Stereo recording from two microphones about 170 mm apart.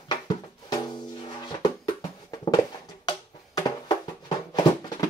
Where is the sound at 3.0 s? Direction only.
25° left (ahead or behind).